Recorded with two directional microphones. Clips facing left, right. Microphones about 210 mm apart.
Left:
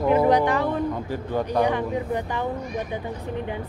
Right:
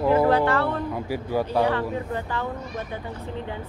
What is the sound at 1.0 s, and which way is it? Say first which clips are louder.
Speech: right 1 dB; 10° right (ahead or behind).